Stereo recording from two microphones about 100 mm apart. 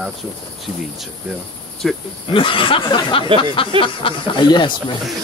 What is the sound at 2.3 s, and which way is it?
Speech, 60° left (ahead or behind).